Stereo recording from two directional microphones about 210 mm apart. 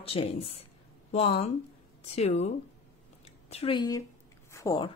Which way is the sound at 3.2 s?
30° left (ahead or behind).